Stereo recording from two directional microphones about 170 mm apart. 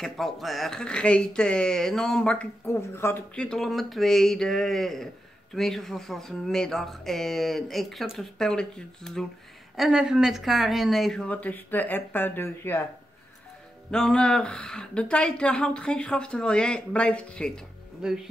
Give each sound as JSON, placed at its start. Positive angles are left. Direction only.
{"t": 0.0, "sound": "speech", "side_deg": 0}
{"t": 13.8, "sound": "speech", "side_deg": 5}